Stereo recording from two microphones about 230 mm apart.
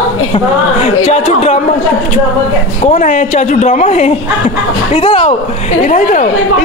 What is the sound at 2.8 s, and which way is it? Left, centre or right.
A woman's voice, left.